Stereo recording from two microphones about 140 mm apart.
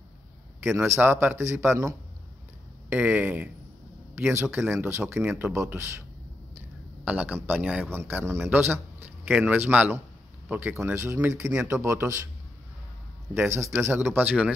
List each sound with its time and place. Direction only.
0.7 s a man's voice: 15° right (ahead or behind)
7.1 s a man's voice: 10° right (ahead or behind)
13.3 s a man's voice: 20° right (ahead or behind)